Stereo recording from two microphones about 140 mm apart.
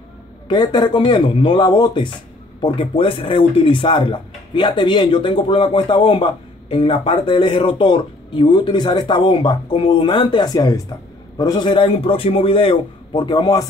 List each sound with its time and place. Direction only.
0.5 s speech: 30° left (ahead or behind)